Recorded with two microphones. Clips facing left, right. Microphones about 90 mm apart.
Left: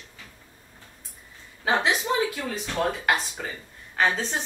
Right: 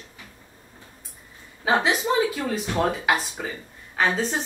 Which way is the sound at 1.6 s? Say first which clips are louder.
Right 2 dB; 5° right (ahead or behind).